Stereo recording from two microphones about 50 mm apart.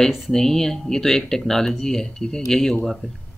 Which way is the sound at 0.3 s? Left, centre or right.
Centre.